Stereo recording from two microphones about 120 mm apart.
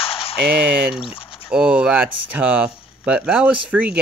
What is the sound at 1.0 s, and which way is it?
Speech, 50° left (ahead or behind).